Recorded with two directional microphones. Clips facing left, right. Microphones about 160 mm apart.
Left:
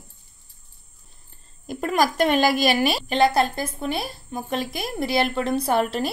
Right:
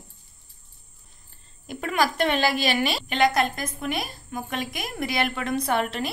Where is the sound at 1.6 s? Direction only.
40° left (ahead or behind).